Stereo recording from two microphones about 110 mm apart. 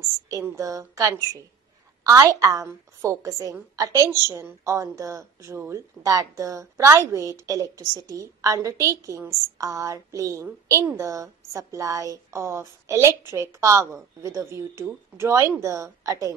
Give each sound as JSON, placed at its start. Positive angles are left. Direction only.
{"t": 0.3, "sound": "a woman's voice", "side_deg": -30}